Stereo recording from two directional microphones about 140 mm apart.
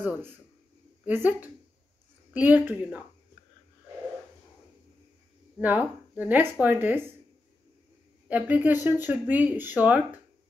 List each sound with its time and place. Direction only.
0.0 s speech: 15° right (ahead or behind)
5.6 s speech: 10° right (ahead or behind)
8.3 s speech: 10° right (ahead or behind)